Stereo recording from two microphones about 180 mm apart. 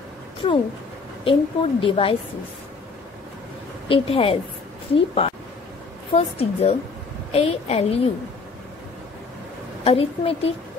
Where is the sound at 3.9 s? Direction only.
30° left (ahead or behind).